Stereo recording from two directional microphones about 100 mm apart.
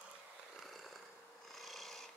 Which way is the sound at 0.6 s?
Centre (ahead or behind).